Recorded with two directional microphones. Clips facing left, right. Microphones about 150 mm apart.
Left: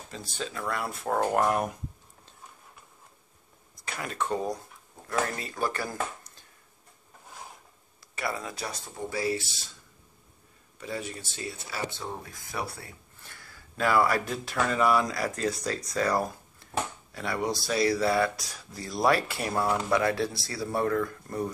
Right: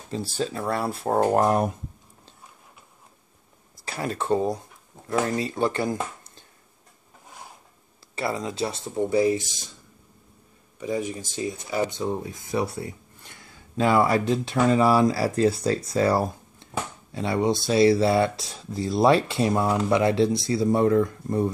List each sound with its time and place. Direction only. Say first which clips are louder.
0.1 s speech: right 9 dB; 30° right (ahead or behind)
3.8 s speech: right 4 dB; 35° right (ahead or behind)
8.2 s speech: right 6 dB; 25° right (ahead or behind)
10.8 s speech: right 8 dB; 15° right (ahead or behind)